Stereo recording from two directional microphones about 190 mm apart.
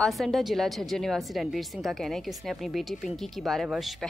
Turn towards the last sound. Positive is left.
turn(degrees=0)  # may be behind; listen again after turning